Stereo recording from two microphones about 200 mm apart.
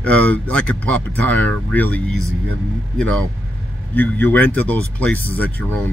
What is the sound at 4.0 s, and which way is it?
Speech, 10° left (ahead or behind).